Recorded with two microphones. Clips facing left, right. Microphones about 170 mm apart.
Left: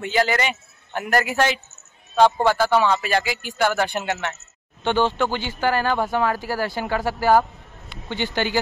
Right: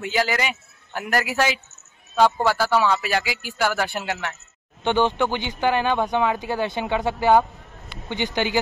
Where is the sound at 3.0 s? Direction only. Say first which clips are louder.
Left 2 dB; 10° right (ahead or behind).